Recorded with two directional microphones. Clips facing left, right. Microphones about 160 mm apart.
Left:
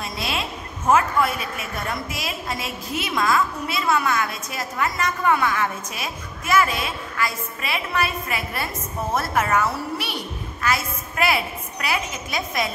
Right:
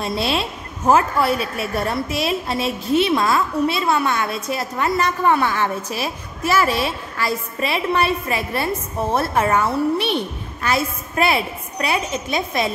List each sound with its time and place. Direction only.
0.0 s a woman's voice: 30° right (ahead or behind)